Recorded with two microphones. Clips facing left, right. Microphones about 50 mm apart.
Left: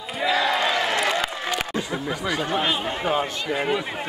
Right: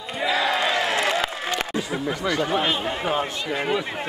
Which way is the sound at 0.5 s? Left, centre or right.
Centre.